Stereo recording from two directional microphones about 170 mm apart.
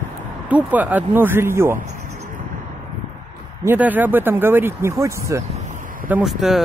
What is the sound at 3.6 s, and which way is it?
Speech, 10° right (ahead or behind).